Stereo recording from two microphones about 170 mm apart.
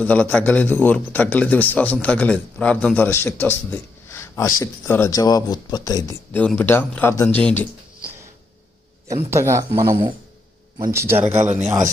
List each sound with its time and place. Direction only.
0.0 s a man's voice: 10° left (ahead or behind)
6.3 s a man's voice: 10° left (ahead or behind)
9.3 s speech: 15° right (ahead or behind)
9.7 s speech: 25° right (ahead or behind)
10.9 s speech: 15° right (ahead or behind)
11.3 s speech: 45° right (ahead or behind)